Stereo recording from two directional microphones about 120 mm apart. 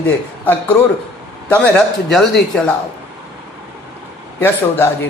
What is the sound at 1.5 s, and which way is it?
Speech, 5° left (ahead or behind).